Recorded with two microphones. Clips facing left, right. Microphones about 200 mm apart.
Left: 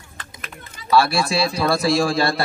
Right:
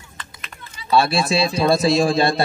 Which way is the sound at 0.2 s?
50° left (ahead or behind).